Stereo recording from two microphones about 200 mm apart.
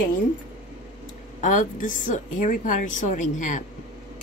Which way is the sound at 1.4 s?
40° left (ahead or behind).